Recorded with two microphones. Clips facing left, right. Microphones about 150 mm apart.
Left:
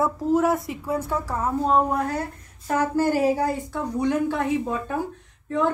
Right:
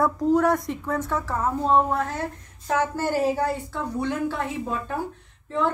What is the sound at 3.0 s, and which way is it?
Speech, 10° left (ahead or behind).